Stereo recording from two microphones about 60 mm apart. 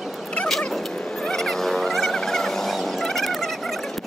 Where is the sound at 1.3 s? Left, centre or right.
Centre.